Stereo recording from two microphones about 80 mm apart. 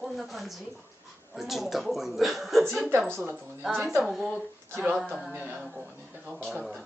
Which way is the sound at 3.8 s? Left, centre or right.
Centre.